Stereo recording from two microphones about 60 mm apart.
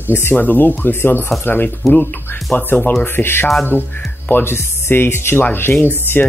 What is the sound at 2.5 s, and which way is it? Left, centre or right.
Speech, left.